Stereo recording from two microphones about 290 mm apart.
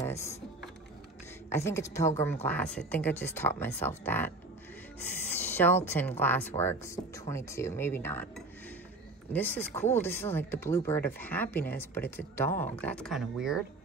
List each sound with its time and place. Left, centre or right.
0.0 s typing: centre
1.5 s speech: centre
5.3 s a sound: centre
5.9 s speech: centre